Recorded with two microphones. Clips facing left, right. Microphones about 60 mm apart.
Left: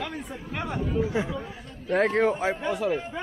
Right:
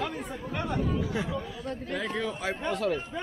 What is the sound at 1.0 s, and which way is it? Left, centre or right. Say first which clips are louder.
Speech: left 4 dB; left.